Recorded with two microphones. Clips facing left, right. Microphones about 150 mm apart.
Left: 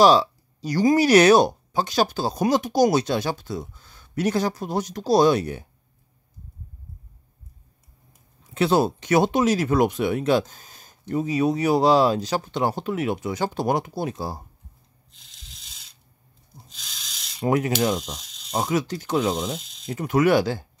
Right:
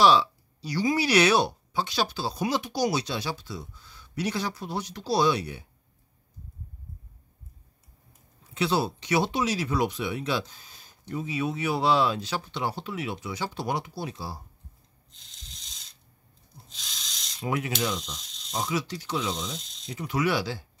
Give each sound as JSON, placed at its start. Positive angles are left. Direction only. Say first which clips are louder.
{"t": 0.0, "sound": "speech", "louder": "left 4 dB", "side_deg": 40}
{"t": 8.5, "sound": "speech", "louder": "left 6 dB", "side_deg": 50}
{"t": 15.0, "sound": "rub", "louder": "left 1 dB", "side_deg": 5}
{"t": 16.6, "sound": "a sound", "louder": "right 1 dB", "side_deg": 0}
{"t": 17.4, "sound": "speech", "louder": "left 8 dB", "side_deg": 45}
{"t": 18.1, "sound": "insect", "louder": "left 4 dB", "side_deg": 5}
{"t": 18.5, "sound": "speech", "louder": "left 6 dB", "side_deg": 50}
{"t": 19.6, "sound": "a sound", "louder": "left 1 dB", "side_deg": 5}
{"t": 19.9, "sound": "speech", "louder": "left 8 dB", "side_deg": 50}